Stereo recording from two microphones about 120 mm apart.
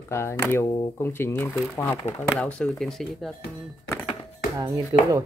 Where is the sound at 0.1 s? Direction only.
20° left (ahead or behind).